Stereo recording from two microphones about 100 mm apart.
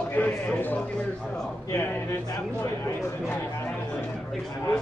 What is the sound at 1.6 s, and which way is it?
Speech, 30° left (ahead or behind).